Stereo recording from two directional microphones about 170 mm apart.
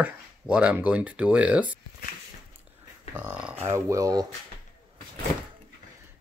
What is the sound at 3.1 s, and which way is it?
Speech, 10° right (ahead or behind).